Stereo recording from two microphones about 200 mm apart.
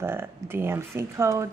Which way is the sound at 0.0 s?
10° right (ahead or behind).